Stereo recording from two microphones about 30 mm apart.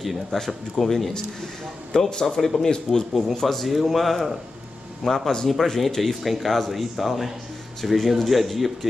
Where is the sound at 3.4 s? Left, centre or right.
Centre.